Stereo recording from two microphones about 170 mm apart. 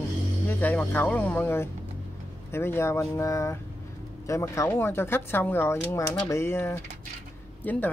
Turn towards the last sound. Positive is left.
turn(degrees=10)  # may be behind; listen again after turning